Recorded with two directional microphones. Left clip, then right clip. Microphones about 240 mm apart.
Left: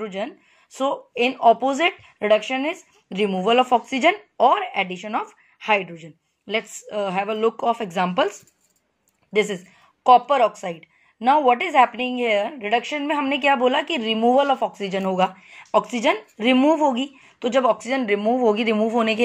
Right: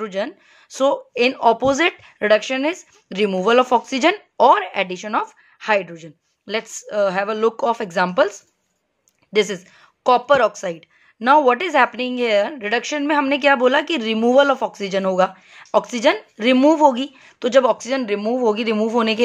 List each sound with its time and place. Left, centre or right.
0.0 s a woman's voice: right
10.6 s speech: right
18.8 s speech: right